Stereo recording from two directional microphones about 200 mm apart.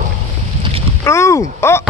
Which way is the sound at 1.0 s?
15° left (ahead or behind).